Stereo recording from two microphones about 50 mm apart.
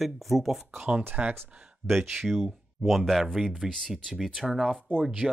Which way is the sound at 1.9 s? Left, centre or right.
Centre.